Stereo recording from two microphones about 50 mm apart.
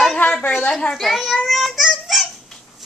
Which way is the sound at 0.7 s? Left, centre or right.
Centre.